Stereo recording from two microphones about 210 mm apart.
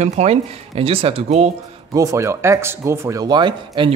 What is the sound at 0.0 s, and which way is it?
Speech, 30° right (ahead or behind).